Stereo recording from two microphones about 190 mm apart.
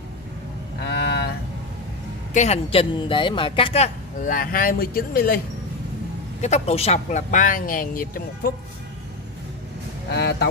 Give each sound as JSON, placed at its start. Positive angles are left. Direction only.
{"t": 0.8, "sound": "a sound", "side_deg": 65}
{"t": 2.3, "sound": "speech", "side_deg": 35}
{"t": 6.4, "sound": "speech", "side_deg": 35}
{"t": 10.1, "sound": "speech", "side_deg": 60}